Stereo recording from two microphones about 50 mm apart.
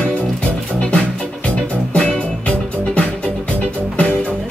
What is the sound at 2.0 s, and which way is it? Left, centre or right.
Music, centre.